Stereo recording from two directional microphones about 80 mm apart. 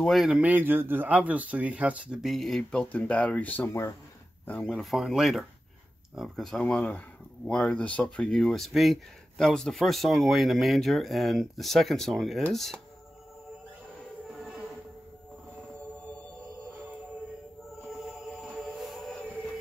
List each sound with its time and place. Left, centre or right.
0.0 s speech: centre
0.4 s speech: right
2.2 s speech: centre
3.6 s speech: left
4.6 s speech: centre
6.6 s speech: centre
17.8 s music: centre